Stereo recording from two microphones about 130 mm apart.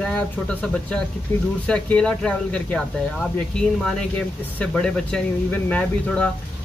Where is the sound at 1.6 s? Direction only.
10° left (ahead or behind).